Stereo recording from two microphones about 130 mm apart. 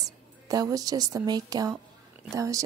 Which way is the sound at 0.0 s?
30° right (ahead or behind).